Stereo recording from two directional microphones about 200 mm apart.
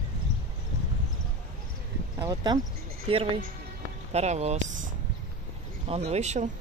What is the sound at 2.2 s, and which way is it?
Speech, 20° right (ahead or behind).